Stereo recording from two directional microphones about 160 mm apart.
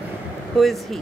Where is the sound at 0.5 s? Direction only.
Centre (ahead or behind).